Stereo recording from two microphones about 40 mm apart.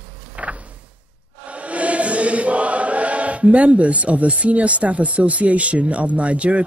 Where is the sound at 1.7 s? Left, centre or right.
Right.